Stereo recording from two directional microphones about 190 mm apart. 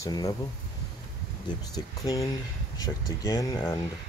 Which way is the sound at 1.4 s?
20° left (ahead or behind).